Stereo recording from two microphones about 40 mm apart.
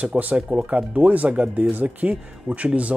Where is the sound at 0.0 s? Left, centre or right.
Right.